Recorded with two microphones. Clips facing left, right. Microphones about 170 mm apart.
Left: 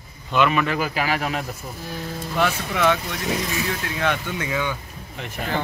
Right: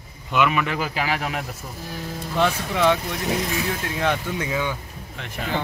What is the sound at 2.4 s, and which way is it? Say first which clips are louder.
Speech: right 1 dB; 30° right (ahead or behind).